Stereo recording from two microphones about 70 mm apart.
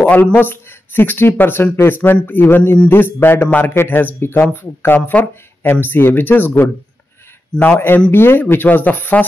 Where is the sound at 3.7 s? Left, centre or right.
Left.